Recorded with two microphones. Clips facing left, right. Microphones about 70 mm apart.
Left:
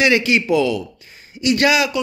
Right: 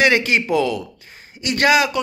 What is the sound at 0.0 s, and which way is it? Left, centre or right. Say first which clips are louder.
Speech: even; right.